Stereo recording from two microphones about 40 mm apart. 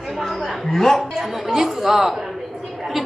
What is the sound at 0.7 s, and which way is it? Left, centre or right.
Speech, centre.